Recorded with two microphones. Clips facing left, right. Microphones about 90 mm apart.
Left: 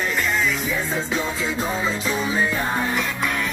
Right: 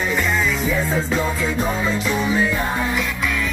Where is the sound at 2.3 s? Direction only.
25° left (ahead or behind).